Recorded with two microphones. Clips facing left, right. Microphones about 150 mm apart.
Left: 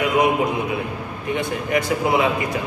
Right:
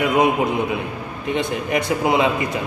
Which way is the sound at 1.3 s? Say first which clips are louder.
Right 1 dB; 20° right (ahead or behind).